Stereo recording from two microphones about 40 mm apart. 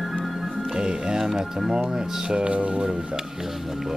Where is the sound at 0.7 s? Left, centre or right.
Centre.